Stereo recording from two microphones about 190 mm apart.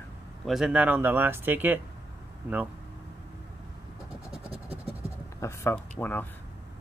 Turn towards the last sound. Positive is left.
turn(degrees=10)  # may be behind; listen again after turning